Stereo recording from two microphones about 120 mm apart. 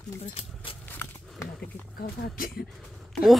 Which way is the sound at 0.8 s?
15° left (ahead or behind).